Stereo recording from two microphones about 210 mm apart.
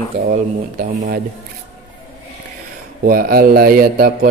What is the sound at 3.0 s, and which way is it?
Speech, 45° right (ahead or behind).